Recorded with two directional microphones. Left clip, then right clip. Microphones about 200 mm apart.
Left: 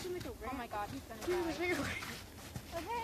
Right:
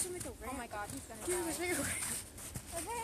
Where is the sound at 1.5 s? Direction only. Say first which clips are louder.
Left 1 dB; 55° right (ahead or behind).